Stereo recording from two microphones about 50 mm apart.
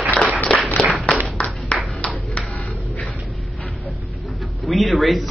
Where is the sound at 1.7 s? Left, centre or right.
Left.